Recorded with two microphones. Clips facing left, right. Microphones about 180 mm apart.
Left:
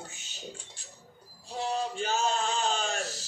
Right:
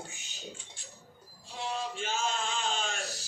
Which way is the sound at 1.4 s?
40° left (ahead or behind).